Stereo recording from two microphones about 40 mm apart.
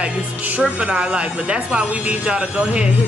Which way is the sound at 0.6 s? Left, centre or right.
Right.